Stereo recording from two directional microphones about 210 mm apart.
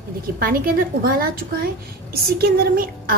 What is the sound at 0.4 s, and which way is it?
A woman's voice, 45° right (ahead or behind).